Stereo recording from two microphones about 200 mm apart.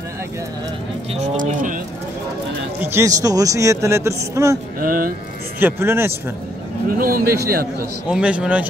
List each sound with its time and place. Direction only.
1.1 s speech: 40° right (ahead or behind)
2.8 s speech: 15° right (ahead or behind)
4.7 s speech: 45° right (ahead or behind)
5.6 s speech: 10° right (ahead or behind)
6.9 s speech: 45° right (ahead or behind)
8.1 s speech: 5° right (ahead or behind)